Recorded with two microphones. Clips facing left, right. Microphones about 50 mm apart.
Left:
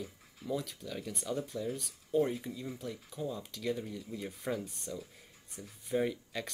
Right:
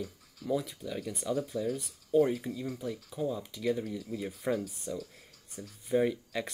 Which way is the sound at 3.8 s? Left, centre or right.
Centre.